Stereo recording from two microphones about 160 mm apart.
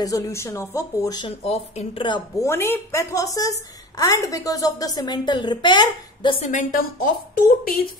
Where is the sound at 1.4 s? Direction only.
40° left (ahead or behind).